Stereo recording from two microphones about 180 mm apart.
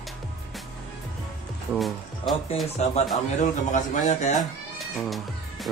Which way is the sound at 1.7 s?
Centre (ahead or behind).